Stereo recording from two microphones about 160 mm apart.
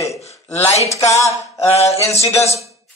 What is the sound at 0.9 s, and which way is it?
Speech, 20° left (ahead or behind).